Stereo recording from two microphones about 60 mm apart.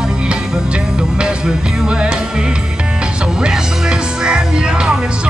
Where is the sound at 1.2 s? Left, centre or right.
Centre.